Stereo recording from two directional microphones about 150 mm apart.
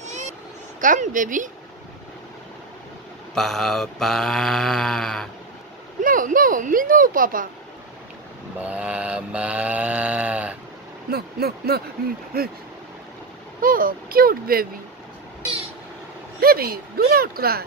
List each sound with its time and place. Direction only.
0.7 s a woman's voice: 60° right (ahead or behind)
3.3 s mantra: centre (ahead or behind)
6.0 s speech: 65° right (ahead or behind)
8.5 s mantra: 10° right (ahead or behind)
11.1 s speech: 90° right
13.6 s speech: 70° right (ahead or behind)
16.3 s speech: 90° right